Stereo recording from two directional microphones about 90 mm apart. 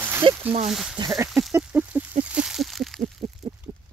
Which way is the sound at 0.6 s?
5° right (ahead or behind).